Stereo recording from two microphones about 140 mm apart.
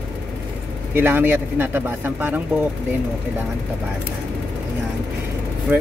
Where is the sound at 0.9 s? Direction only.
15° right (ahead or behind).